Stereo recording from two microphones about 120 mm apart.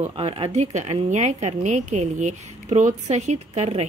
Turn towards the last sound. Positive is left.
turn(degrees=-65)  # may be behind; listen again after turning